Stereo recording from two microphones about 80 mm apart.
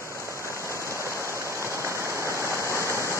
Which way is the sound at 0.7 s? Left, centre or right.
Left.